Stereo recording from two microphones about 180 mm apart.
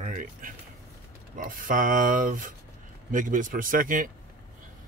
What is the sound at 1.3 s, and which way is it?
Speech, 50° right (ahead or behind).